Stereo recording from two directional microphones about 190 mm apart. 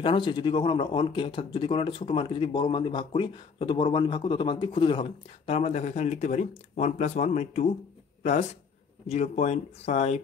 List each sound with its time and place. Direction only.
0.0 s speech: 25° left (ahead or behind)